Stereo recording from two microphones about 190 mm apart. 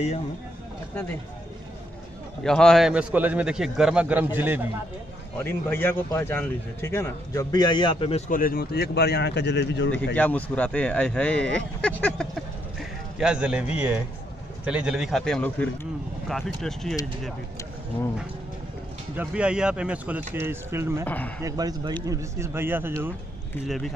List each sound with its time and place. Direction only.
2.4 s a man's voice: 5° left (ahead or behind)
5.4 s a man's voice: 10° left (ahead or behind); by 8.2 s 25° left (ahead or behind)
8.3 s speech: 50° left (ahead or behind); by 9.9 s 65° left (ahead or behind)
10.1 s a man's voice: 10° left (ahead or behind)
19.1 s a man's voice: 5° right (ahead or behind)
21.0 s a man's voice: 10° left (ahead or behind)
21.4 s a man's voice: 20° right (ahead or behind)